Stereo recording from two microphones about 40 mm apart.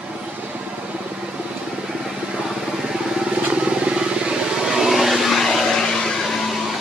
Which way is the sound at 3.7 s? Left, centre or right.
Right.